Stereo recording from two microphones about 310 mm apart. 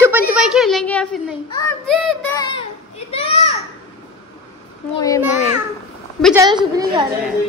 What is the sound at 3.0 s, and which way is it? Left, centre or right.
Speech, centre.